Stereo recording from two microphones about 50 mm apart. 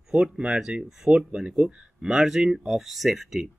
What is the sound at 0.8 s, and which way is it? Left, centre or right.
Speech, centre.